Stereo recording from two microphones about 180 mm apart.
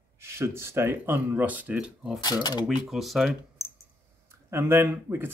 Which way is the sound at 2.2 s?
25° left (ahead or behind).